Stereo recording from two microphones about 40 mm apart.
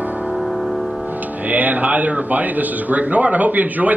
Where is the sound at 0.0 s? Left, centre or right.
Right.